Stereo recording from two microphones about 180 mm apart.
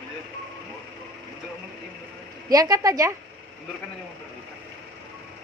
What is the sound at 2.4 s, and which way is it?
Speech, 20° right (ahead or behind).